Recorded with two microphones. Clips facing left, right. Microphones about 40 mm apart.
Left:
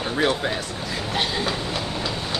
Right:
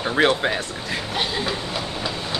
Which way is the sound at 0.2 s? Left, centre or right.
Right.